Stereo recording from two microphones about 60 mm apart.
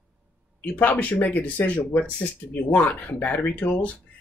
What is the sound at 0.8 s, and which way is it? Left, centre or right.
Speech, left.